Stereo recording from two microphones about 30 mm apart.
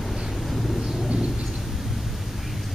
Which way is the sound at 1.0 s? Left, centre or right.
Right.